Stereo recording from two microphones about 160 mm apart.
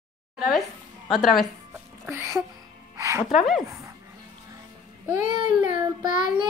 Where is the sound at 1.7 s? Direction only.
15° right (ahead or behind).